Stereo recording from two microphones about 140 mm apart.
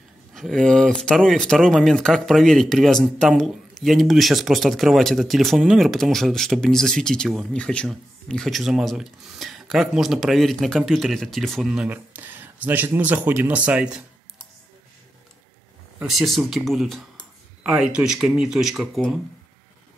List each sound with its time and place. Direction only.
0.3 s speech: centre (ahead or behind)
16.0 s speech: centre (ahead or behind)